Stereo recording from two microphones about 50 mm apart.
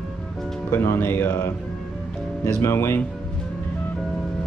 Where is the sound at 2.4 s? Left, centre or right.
Left.